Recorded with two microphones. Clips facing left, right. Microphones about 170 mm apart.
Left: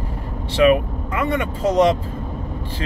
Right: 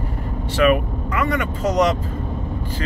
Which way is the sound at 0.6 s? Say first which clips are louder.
Left 2 dB; 25° left (ahead or behind).